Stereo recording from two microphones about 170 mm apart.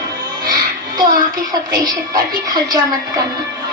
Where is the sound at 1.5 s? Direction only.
25° right (ahead or behind).